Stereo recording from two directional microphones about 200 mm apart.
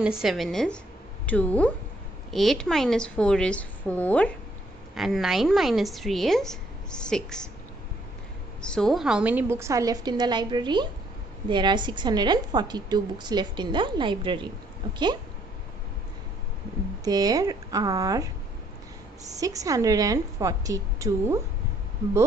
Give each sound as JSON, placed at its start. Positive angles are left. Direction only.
{"t": 0.0, "sound": "a woman's voice", "side_deg": -5}
{"t": 8.5, "sound": "a woman's voice", "side_deg": 5}
{"t": 17.0, "sound": "a woman's voice", "side_deg": -20}
{"t": 19.3, "sound": "a woman's voice", "side_deg": -15}